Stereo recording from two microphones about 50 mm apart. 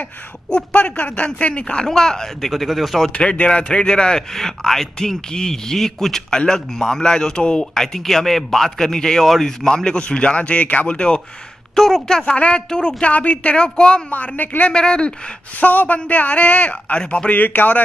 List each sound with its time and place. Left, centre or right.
0.5 s a woman's voice: left
1.9 s speech: centre
2.5 s speech: centre
3.2 s speech: left
9.9 s a woman's voice: left
11.7 s a woman's voice: centre
14.1 s a woman's voice: left
14.7 s speech: centre
15.6 s a woman's voice: left